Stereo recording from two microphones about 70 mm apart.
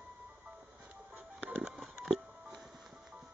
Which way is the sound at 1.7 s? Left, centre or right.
Centre.